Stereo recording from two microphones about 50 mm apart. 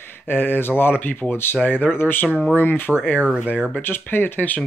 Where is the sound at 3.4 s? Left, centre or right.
Right.